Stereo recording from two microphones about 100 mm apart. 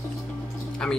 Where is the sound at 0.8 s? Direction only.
10° left (ahead or behind).